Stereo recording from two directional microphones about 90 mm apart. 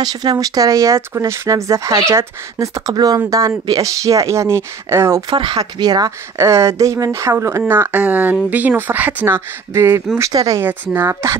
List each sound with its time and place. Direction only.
0.0 s speech: 50° right (ahead or behind); by 2.7 s 30° right (ahead or behind)
2.9 s speech: 45° right (ahead or behind); by 5.2 s 30° right (ahead or behind)
5.3 s speech: 65° right (ahead or behind)
5.6 s speech: 50° right (ahead or behind)
6.3 s speech: 35° right (ahead or behind)
10.3 s speech: 40° right (ahead or behind)
10.6 s speech: 25° right (ahead or behind)